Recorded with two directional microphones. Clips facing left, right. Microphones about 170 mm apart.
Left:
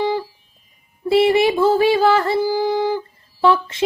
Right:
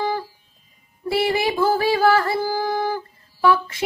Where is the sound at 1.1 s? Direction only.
20° left (ahead or behind).